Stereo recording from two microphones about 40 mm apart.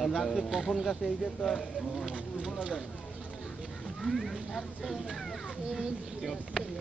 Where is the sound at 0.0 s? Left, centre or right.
Centre.